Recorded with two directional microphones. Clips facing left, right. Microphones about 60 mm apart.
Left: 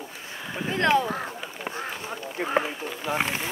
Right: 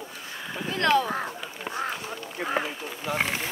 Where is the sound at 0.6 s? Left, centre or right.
Left.